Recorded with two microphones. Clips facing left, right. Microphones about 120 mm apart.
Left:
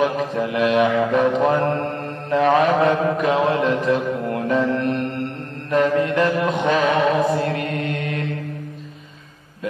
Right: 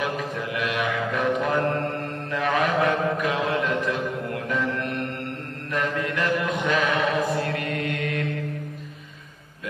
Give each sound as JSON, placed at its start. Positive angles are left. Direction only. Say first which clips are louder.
{"t": 0.4, "sound": "mantra", "louder": "left 12 dB", "side_deg": 30}
{"t": 5.7, "sound": "mantra", "louder": "left 9 dB", "side_deg": 30}